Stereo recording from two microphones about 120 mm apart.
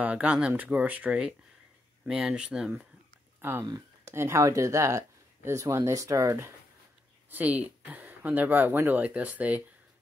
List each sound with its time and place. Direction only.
0.0 s speech: 10° right (ahead or behind)
3.3 s speech: 20° right (ahead or behind)
7.2 s speech: 15° right (ahead or behind)